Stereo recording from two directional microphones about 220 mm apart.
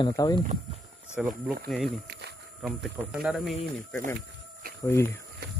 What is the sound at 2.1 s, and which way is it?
Walk, 50° right (ahead or behind).